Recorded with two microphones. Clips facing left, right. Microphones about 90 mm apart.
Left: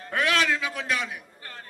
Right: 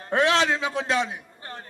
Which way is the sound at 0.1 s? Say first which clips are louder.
Right 4 dB; 25° right (ahead or behind).